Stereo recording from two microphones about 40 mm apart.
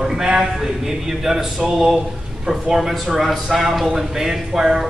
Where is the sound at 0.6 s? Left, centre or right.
Centre.